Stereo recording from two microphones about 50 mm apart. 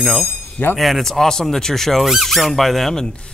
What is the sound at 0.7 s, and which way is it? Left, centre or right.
Speech, centre.